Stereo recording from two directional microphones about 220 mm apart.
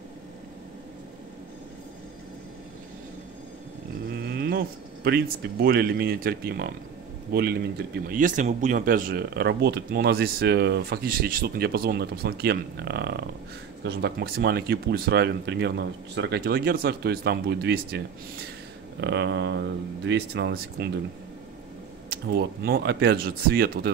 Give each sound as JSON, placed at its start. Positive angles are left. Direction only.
{"t": 4.1, "sound": "speech", "side_deg": -45}
{"t": 22.1, "sound": "speech", "side_deg": -45}